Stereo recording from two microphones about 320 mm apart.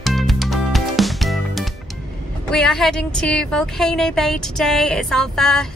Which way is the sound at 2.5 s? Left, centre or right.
Centre.